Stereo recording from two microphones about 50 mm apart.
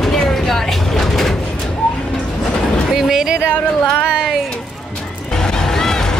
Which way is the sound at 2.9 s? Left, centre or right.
Centre.